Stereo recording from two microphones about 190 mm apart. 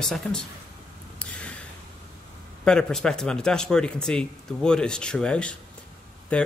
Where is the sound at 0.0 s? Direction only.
5° left (ahead or behind).